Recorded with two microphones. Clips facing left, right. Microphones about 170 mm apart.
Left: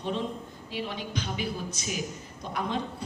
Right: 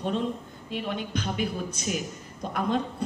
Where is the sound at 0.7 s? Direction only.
50° right (ahead or behind).